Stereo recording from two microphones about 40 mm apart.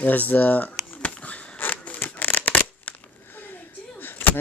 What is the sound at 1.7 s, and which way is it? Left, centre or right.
Scissors, left.